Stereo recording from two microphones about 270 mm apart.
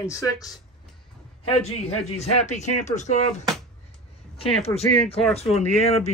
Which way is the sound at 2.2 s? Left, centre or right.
Left.